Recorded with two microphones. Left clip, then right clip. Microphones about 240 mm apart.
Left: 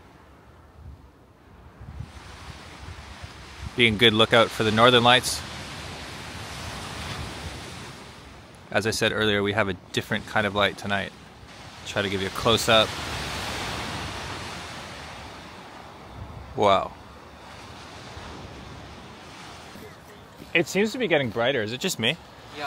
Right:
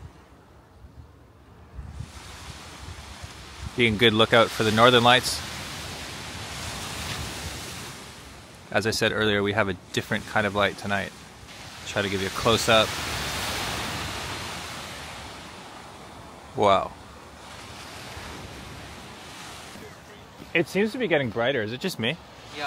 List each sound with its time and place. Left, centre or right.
3.7 s speech: centre
5.9 s pink noise: centre
8.6 s speech: centre
13.5 s vehicle: right
14.8 s waves: centre
16.5 s speech: centre
20.5 s speech: centre